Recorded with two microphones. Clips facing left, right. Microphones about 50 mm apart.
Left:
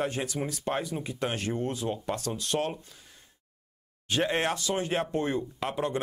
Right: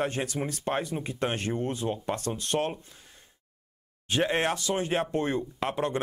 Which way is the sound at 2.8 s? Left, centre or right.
Right.